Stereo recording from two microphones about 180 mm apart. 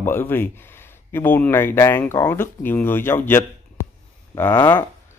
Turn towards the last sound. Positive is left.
turn(degrees=10)  # may be behind; listen again after turning